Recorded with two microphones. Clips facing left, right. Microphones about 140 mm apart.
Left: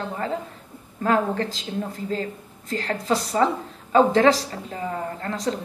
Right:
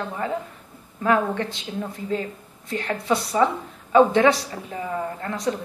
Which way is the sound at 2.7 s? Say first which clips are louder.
Even; 35° left (ahead or behind).